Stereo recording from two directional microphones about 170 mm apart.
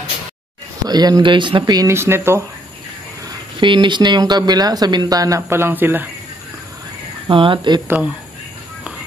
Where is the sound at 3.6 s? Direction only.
30° right (ahead or behind); by 6.0 s 10° right (ahead or behind).